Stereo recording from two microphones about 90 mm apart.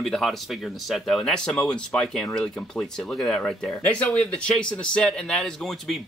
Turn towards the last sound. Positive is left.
turn(degrees=5)  # may be behind; listen again after turning